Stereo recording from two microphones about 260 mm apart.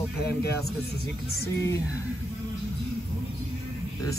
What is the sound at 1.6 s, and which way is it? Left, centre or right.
Speech, centre.